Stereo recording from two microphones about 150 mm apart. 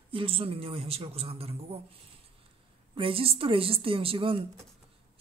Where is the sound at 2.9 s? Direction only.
35° right (ahead or behind).